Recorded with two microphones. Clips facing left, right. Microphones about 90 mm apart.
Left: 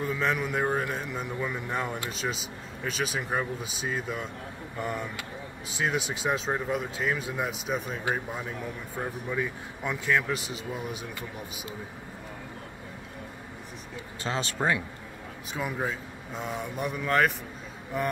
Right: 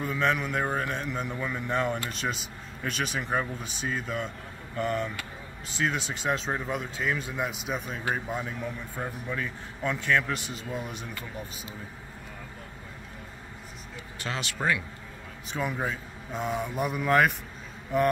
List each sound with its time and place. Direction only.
0.0 s a man's voice: centre (ahead or behind)
14.2 s speech: 35° left (ahead or behind)
15.5 s a man's voice: 5° left (ahead or behind)